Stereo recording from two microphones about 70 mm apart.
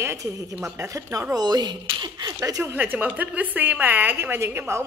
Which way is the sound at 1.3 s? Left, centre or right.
Right.